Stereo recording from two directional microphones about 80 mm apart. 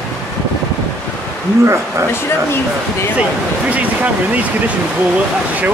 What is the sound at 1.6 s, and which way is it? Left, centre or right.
Speech, right.